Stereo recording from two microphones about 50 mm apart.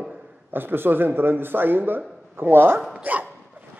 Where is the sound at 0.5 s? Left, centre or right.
Right.